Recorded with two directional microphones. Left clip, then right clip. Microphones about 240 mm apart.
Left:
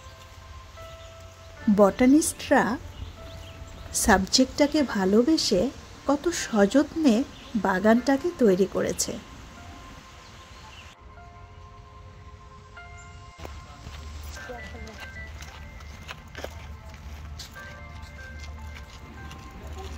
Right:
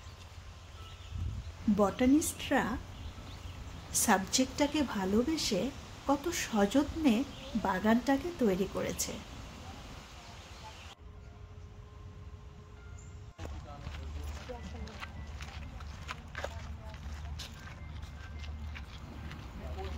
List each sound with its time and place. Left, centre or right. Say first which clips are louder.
1.8 s speech: left 9 dB; left
3.9 s speech: left 8 dB; left